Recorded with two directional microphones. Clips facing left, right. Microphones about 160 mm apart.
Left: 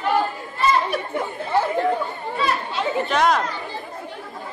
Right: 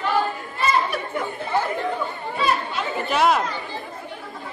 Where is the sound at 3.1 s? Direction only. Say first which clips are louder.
Right 2 dB; 5° right (ahead or behind).